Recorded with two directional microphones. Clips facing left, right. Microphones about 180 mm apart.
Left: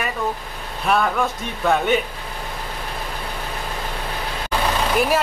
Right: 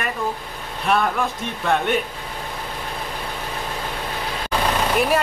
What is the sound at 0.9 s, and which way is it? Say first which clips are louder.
Speech: left 1 dB; centre (ahead or behind).